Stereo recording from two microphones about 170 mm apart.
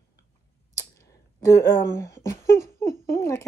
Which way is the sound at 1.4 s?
20° left (ahead or behind).